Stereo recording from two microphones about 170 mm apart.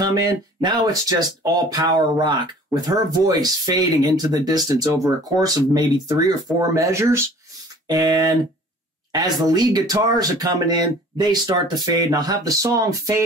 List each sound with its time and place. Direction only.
0.0 s speech: 20° right (ahead or behind)